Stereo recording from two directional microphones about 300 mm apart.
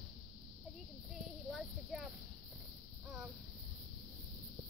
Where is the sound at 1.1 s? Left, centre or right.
Centre.